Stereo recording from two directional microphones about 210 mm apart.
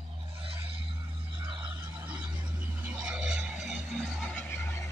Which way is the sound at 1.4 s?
20° right (ahead or behind).